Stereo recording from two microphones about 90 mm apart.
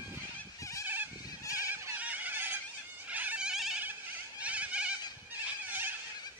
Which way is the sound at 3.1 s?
15° right (ahead or behind).